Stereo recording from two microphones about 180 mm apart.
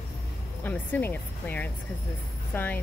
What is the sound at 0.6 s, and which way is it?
Speech, 10° left (ahead or behind).